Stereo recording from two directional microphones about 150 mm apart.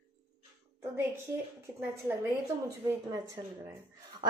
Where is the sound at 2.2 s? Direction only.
25° right (ahead or behind).